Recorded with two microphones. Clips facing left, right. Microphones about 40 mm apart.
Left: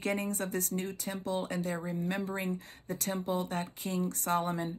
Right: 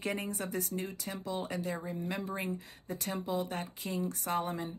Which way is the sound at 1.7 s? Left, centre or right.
Centre.